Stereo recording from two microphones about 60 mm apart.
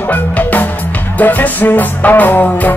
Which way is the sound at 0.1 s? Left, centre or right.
Left.